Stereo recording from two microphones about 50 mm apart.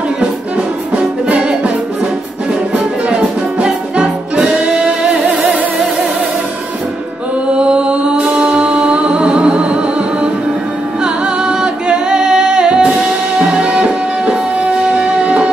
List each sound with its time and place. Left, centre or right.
1.2 s music: right
3.5 s music: centre
5.2 s music: right
7.5 s music: right
11.4 s music: centre